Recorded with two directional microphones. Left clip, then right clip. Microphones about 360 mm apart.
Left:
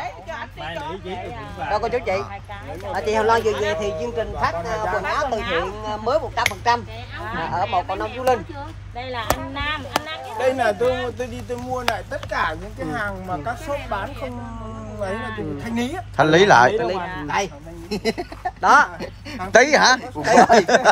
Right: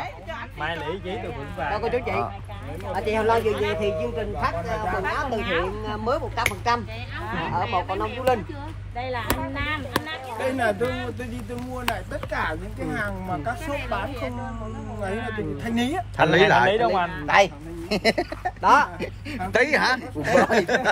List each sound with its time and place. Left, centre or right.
1.7 s speech: centre
13.7 s speech: centre
15.1 s speech: left
15.6 s speech: centre
16.8 s speech: left
17.3 s speech: centre
18.6 s speech: left
19.5 s speech: centre